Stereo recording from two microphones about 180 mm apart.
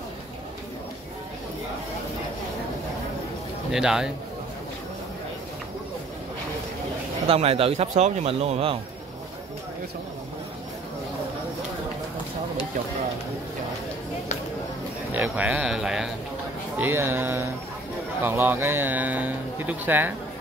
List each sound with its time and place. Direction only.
3.7 s speech: 5° right (ahead or behind)
7.2 s speech: 35° right (ahead or behind)
15.1 s speech: 10° right (ahead or behind)